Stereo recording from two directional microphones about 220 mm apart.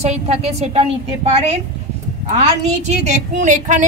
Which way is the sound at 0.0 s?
30° right (ahead or behind).